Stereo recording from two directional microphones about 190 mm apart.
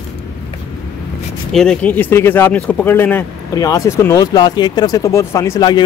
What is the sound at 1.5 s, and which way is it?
Speech, 5° left (ahead or behind).